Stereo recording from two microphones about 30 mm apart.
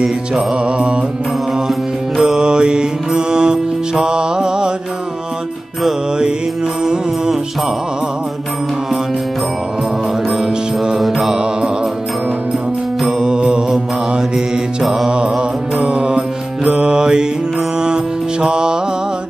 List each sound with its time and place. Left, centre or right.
0.7 s music: right
2.2 s music: right
10.3 s music: centre
11.0 s mantra: centre
13.0 s music: right
14.3 s mantra: centre
15.0 s mantra: right
17.8 s music: right